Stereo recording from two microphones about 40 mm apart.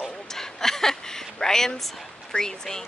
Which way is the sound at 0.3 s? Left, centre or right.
Centre.